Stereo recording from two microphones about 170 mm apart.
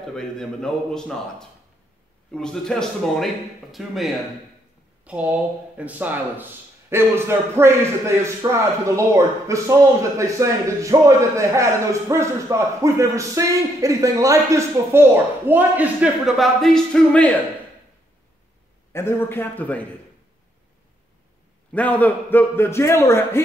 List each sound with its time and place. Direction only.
0.1 s a man's voice: 5° left (ahead or behind)
18.9 s a man's voice: 15° left (ahead or behind)
21.7 s a man's voice: 10° left (ahead or behind)